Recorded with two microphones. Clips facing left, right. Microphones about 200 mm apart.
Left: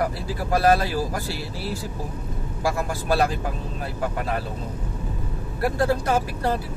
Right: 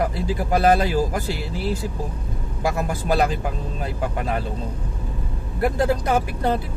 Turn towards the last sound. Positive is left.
turn(degrees=-20)  # may be behind; listen again after turning